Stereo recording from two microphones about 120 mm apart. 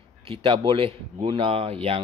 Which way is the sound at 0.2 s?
50° right (ahead or behind).